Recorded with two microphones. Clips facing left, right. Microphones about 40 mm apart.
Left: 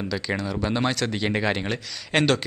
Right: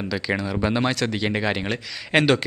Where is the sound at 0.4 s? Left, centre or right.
Centre.